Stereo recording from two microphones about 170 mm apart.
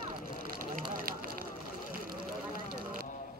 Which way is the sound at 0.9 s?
60° right (ahead or behind).